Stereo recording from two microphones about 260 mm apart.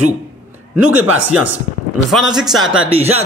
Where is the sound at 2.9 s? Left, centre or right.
Right.